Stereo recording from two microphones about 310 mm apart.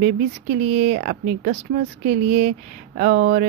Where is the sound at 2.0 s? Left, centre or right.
Right.